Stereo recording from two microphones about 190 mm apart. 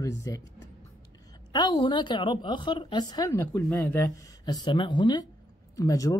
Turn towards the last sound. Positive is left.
turn(degrees=20)  # may be behind; listen again after turning